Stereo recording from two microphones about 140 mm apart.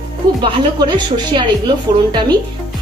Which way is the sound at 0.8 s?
35° right (ahead or behind).